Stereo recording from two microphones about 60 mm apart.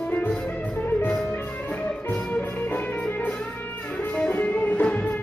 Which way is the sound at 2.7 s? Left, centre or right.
Left.